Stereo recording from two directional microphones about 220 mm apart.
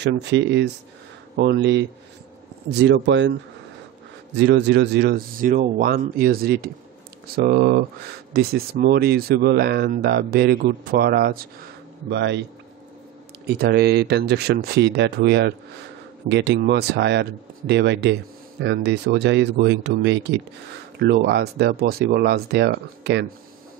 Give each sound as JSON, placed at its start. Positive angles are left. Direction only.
{"t": 0.0, "sound": "speech", "side_deg": -50}
{"t": 13.5, "sound": "speech", "side_deg": -45}